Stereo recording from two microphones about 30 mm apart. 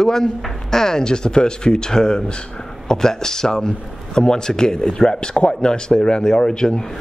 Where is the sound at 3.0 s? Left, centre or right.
Centre.